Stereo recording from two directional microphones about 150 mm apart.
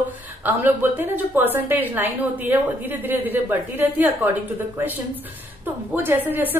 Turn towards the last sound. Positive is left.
turn(degrees=-15)  # may be behind; listen again after turning